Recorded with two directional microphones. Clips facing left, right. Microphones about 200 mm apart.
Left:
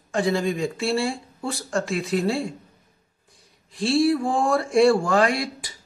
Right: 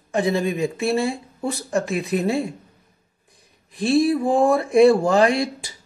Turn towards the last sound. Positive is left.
turn(degrees=-25)  # may be behind; listen again after turning